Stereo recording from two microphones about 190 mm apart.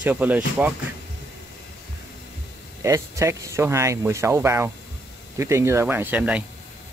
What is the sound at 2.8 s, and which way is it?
Speech, 15° right (ahead or behind).